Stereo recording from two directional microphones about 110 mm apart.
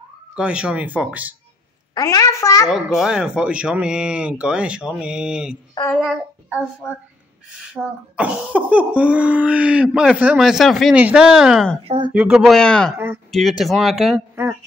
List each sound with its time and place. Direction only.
0.4 s speech: 10° right (ahead or behind)
2.0 s a woman's voice: 30° left (ahead or behind)
3.0 s a child's voice: 5° right (ahead or behind)
7.7 s speech: 15° right (ahead or behind)
11.0 s speech: 10° right (ahead or behind)
11.8 s speech: 65° right (ahead or behind)
12.1 s speech: 10° right (ahead or behind)
12.9 s speech: 15° right (ahead or behind)
13.3 s speech: centre (ahead or behind)